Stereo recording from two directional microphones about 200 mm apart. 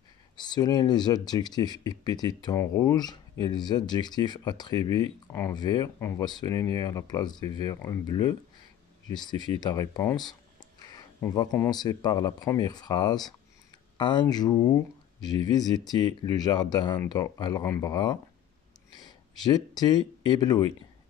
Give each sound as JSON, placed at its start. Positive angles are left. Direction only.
{"t": 0.4, "sound": "speech", "side_deg": 20}